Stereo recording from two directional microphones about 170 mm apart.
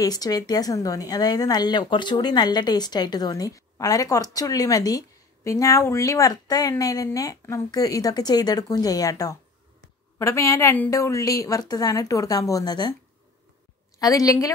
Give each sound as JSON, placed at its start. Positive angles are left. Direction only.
{"t": 0.0, "sound": "speech", "side_deg": 20}
{"t": 13.9, "sound": "speech", "side_deg": 20}